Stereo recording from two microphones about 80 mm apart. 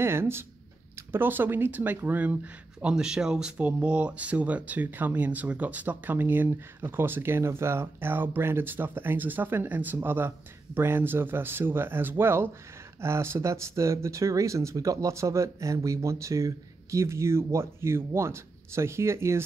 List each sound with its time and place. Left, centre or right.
0.0 s speech: right
2.9 s speech: centre; by 19.4 s right